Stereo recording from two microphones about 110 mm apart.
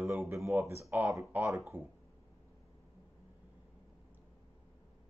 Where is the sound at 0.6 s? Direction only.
25° right (ahead or behind).